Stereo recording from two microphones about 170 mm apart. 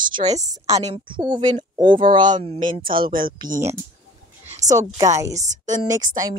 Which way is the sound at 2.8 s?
55° right (ahead or behind).